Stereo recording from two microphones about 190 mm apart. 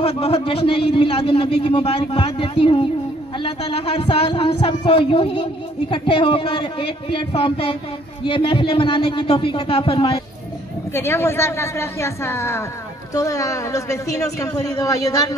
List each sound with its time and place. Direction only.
0.0 s speech: 30° left (ahead or behind)
10.9 s a woman's voice: 15° left (ahead or behind)